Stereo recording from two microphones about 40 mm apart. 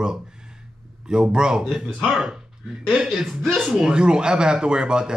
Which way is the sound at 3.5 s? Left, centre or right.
Centre.